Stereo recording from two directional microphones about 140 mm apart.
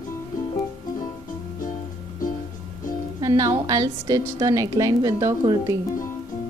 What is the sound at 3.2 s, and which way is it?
A woman's voice, 25° right (ahead or behind).